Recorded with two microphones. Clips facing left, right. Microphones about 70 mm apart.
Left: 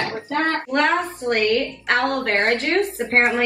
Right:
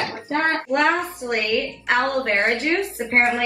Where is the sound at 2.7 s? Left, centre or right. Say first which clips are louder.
Left 2 dB; left.